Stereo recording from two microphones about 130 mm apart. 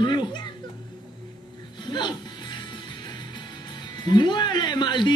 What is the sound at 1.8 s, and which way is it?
Music, 35° left (ahead or behind).